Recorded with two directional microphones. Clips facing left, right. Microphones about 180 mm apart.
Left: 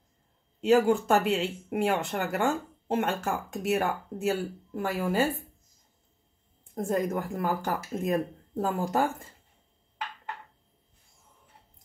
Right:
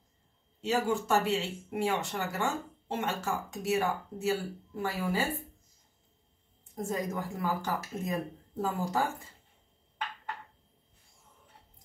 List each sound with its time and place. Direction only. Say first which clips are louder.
0.7 s speech: left 7 dB; 55° left (ahead or behind)
6.7 s speech: left 6 dB; 55° left (ahead or behind)